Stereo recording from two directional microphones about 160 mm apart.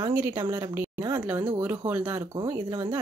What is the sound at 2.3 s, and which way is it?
Speech, 25° right (ahead or behind).